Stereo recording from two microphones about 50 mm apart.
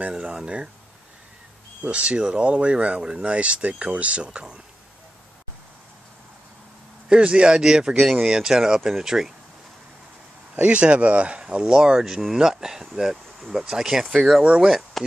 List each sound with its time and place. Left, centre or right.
0.1 s speech: centre
1.9 s speech: right
7.1 s speech: right; by 8.4 s centre
8.4 s speech: centre
10.7 s speech: right; by 15.0 s centre